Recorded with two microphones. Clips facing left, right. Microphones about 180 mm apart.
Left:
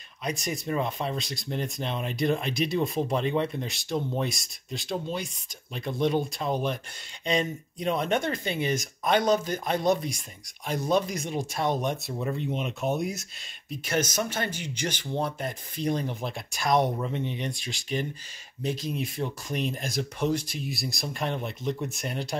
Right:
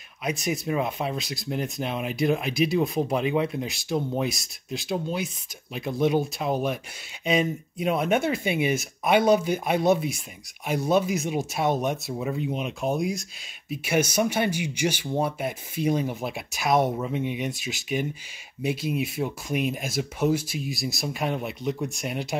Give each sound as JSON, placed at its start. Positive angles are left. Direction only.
{"t": 0.2, "sound": "speech", "side_deg": -5}
{"t": 13.7, "sound": "speech", "side_deg": -10}